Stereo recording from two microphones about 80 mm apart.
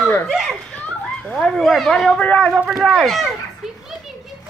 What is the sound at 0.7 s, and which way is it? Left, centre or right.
A child's voice, centre.